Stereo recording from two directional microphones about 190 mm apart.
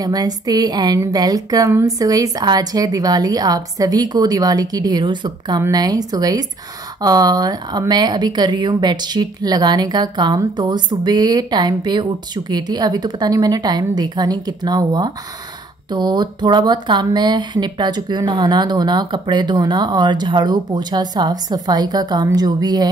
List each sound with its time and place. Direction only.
0.0 s speech: 20° right (ahead or behind)